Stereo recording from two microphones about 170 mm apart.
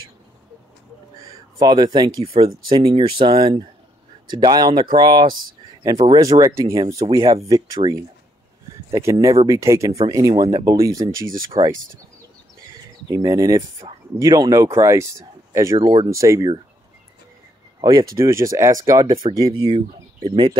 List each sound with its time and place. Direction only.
1.6 s speech: 25° right (ahead or behind)
13.1 s speech: 20° right (ahead or behind)
17.7 s speech: 20° right (ahead or behind)
19.9 s speech: 35° right (ahead or behind)